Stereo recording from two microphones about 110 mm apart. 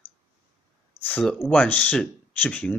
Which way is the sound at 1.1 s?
10° left (ahead or behind).